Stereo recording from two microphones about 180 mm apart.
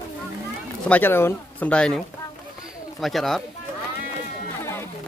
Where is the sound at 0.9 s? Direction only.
10° left (ahead or behind).